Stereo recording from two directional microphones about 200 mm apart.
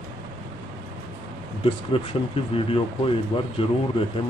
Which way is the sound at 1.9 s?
30° left (ahead or behind).